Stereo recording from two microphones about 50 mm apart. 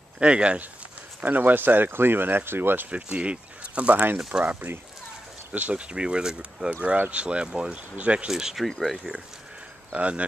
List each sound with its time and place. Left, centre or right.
0.2 s speech: right
1.2 s speech: right
2.9 s speech: right
8.3 s speech: centre
8.6 s speech: centre
9.9 s speech: right